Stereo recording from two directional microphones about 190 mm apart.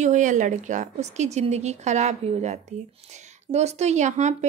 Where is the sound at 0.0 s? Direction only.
40° right (ahead or behind).